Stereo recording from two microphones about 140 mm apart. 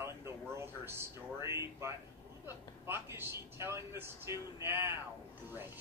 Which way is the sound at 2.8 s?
15° right (ahead or behind).